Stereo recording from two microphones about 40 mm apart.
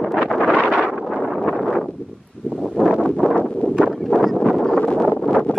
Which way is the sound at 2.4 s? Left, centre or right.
Left.